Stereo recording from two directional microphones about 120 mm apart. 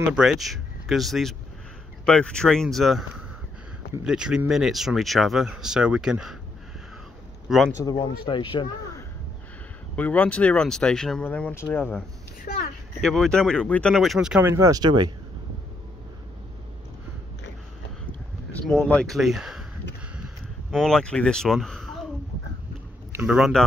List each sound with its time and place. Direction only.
0.1 s speech: 5° right (ahead or behind)
7.4 s a man's voice: centre (ahead or behind)
7.7 s speech: 30° left (ahead or behind)
9.9 s speech: 15° left (ahead or behind)
13.0 s speech: 5° left (ahead or behind)
14.4 s speech: 25° right (ahead or behind)
14.8 s speech: 40° right (ahead or behind)
18.9 s speech: 5° left (ahead or behind)
20.7 s speech: 5° left (ahead or behind)
23.2 s speech: 5° right (ahead or behind)